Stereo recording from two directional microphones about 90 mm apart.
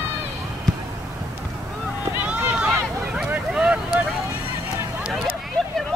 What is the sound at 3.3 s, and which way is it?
Vehicle, 10° right (ahead or behind).